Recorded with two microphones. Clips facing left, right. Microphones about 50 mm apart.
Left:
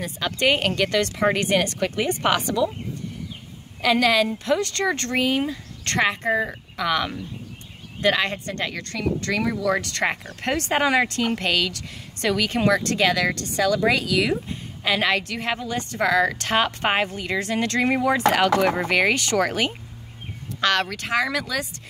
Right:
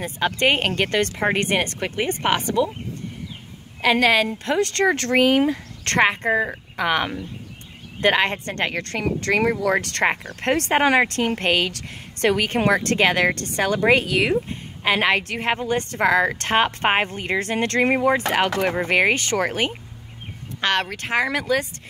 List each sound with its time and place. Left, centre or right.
0.0 s a woman's voice: right
3.8 s a woman's voice: right
4.6 s speech: right
5.9 s a woman's voice: right
17.9 s a woman's voice: right